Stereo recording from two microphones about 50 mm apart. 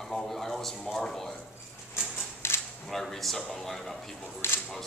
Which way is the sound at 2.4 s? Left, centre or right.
Left.